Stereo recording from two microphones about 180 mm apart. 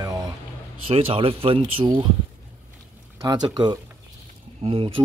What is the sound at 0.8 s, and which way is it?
Speech, 30° right (ahead or behind).